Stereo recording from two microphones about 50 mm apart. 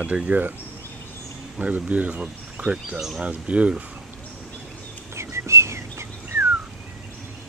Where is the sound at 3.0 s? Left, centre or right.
Centre.